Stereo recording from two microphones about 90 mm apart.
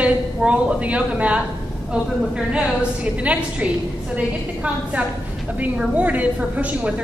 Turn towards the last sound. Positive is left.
turn(degrees=-15)  # may be behind; listen again after turning